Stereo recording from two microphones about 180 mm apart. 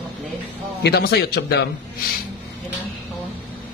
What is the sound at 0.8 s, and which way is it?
Speech, 70° left (ahead or behind).